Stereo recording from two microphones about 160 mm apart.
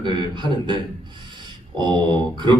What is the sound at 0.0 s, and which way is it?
Speech, 30° right (ahead or behind).